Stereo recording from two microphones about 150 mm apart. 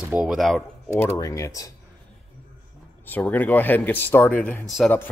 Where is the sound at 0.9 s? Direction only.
20° left (ahead or behind).